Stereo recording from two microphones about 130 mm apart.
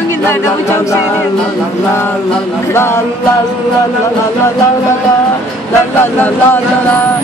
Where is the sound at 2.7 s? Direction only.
20° left (ahead or behind).